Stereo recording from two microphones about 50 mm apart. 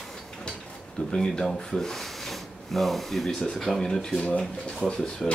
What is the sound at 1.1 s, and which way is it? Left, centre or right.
Speech, centre.